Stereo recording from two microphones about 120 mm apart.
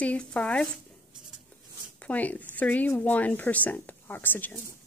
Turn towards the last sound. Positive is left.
turn(degrees=15)  # may be behind; listen again after turning